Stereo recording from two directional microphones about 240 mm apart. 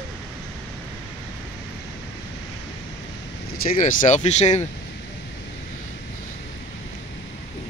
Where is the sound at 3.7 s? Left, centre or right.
Left.